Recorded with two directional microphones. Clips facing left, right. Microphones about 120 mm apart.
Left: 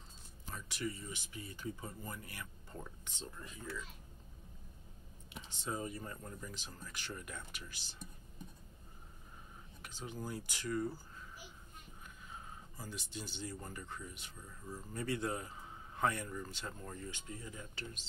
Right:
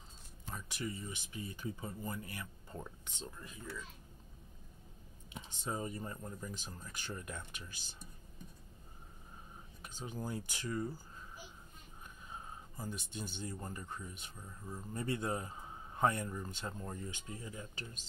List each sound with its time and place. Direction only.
0.5 s speech: 20° right (ahead or behind)
5.3 s speech: 30° right (ahead or behind)
10.0 s speech: 20° right (ahead or behind)
12.9 s speech: 50° right (ahead or behind)
13.5 s speech: 25° right (ahead or behind)